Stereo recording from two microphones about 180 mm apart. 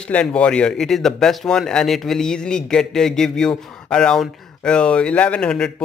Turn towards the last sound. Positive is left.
turn(degrees=5)  # may be behind; listen again after turning